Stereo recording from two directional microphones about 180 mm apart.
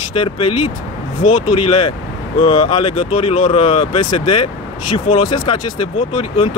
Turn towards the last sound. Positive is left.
turn(degrees=30)  # may be behind; listen again after turning